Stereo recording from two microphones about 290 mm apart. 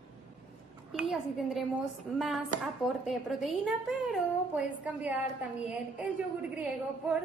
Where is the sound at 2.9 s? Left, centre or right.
Centre.